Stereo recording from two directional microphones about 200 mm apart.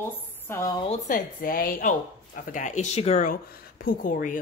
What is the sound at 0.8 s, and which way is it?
Speech, 40° left (ahead or behind).